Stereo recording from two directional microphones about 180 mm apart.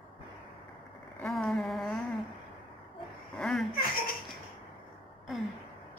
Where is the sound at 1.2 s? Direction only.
Centre (ahead or behind).